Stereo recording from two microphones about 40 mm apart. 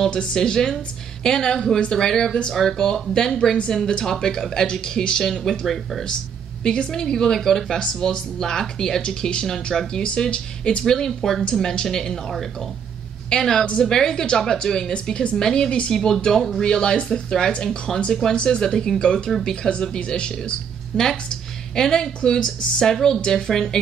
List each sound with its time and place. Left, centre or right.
0.0 s speech: centre
5.2 s speech: centre
6.6 s speech: left; by 7.8 s centre
7.8 s speech: centre
10.8 s speech: centre
18.3 s speech: left
20.9 s speech: centre